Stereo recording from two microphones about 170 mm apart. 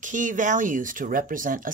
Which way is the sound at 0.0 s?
50° right (ahead or behind).